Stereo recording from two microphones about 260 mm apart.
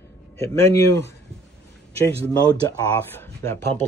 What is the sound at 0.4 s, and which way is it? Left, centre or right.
Speech, centre.